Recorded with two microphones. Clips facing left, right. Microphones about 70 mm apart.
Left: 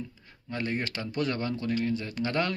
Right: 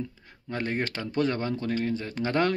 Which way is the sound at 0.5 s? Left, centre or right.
Right.